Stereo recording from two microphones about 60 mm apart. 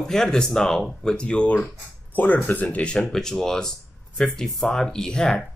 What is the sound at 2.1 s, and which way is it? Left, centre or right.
Speech, left.